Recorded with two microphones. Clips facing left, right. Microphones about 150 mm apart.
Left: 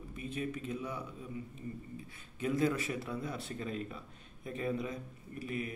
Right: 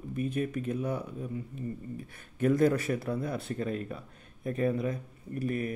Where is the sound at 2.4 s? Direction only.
45° right (ahead or behind).